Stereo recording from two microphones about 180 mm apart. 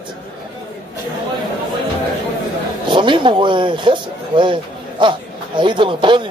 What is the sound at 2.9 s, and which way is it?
Speech, 25° right (ahead or behind).